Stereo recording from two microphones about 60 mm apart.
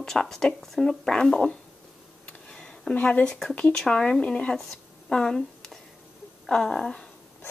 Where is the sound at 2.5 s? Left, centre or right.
Centre.